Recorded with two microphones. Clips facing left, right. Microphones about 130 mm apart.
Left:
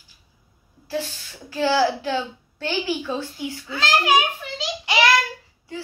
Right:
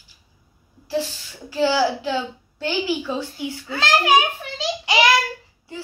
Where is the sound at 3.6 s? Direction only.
50° right (ahead or behind).